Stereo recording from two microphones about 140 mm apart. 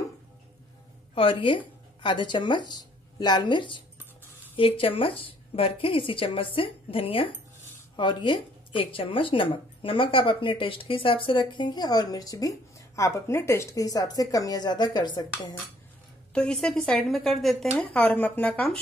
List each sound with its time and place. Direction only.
1.1 s speech: 40° left (ahead or behind)
16.3 s a woman's voice: 5° left (ahead or behind)